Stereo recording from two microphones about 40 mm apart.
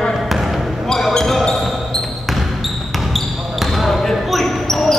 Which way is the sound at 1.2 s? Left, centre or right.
Centre.